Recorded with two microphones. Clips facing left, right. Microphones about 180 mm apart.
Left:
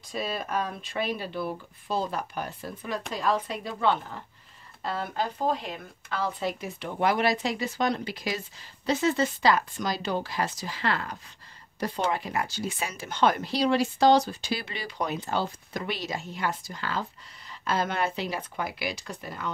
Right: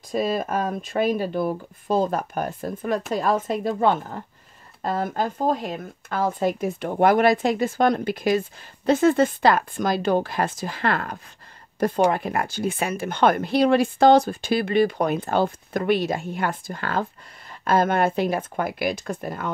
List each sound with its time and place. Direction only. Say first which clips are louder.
0.1 s speech: right 7 dB; 45° right (ahead or behind)